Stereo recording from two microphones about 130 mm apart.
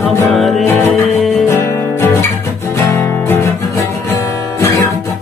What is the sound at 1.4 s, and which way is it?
Music, 15° left (ahead or behind).